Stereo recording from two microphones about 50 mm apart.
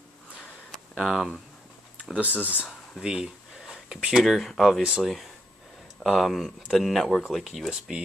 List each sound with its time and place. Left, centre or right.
0.9 s speech: centre
2.1 s speech: right
3.0 s a sound: centre
4.2 s speech: centre